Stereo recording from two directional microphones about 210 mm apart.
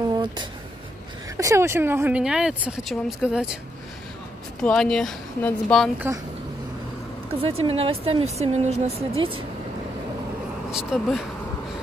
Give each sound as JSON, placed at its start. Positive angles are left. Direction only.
{"t": 1.3, "sound": "speech", "side_deg": -15}
{"t": 4.6, "sound": "speech", "side_deg": 5}
{"t": 7.3, "sound": "speech", "side_deg": -30}
{"t": 10.7, "sound": "speech", "side_deg": -5}